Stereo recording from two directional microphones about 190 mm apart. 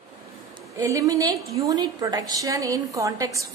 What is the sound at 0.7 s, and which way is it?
A woman's voice, 15° right (ahead or behind).